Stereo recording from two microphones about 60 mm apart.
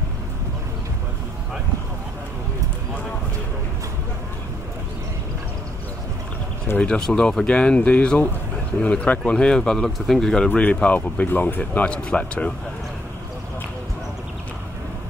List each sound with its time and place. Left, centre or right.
6.8 s speech: centre
10.6 s speech: left
11.9 s speech: centre